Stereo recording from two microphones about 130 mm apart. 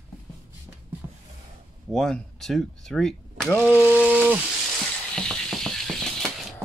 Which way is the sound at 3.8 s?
10° right (ahead or behind).